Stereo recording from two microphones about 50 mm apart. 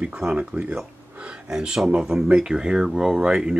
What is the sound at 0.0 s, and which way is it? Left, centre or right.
Speech, right.